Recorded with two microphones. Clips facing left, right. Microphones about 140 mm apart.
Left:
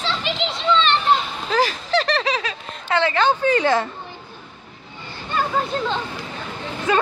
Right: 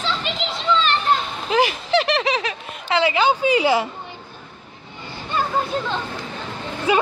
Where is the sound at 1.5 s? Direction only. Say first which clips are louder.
Right 2 dB; 15° right (ahead or behind).